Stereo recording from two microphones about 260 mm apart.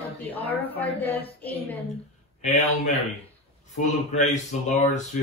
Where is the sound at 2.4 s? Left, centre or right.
Left.